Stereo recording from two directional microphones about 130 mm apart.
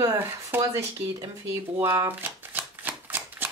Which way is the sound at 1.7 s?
20° right (ahead or behind).